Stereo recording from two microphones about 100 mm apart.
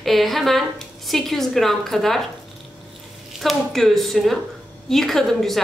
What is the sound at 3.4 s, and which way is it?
A woman's voice, centre (ahead or behind).